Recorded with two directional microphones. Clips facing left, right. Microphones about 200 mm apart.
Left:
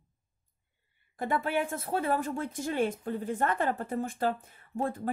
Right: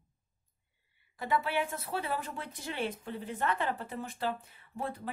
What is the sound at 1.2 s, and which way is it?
A woman's voice, 50° left (ahead or behind).